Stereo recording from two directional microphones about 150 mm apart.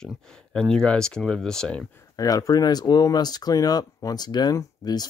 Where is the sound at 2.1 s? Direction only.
25° left (ahead or behind).